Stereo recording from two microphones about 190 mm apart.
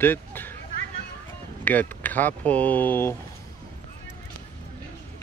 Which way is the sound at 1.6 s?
10° left (ahead or behind).